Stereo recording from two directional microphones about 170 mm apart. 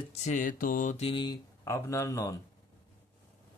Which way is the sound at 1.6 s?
15° left (ahead or behind).